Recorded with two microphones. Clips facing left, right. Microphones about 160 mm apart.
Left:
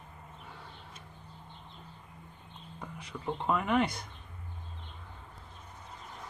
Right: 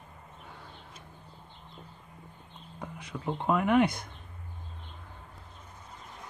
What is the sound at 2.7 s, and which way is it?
Speech, 10° right (ahead or behind).